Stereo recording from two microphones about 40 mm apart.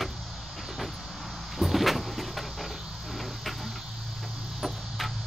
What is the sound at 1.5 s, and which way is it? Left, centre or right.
Vehicle, centre.